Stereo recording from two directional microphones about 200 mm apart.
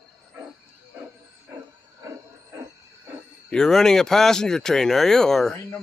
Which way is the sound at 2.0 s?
15° right (ahead or behind).